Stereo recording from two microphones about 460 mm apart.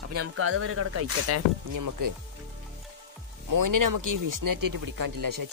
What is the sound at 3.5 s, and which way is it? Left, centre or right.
Speech, right.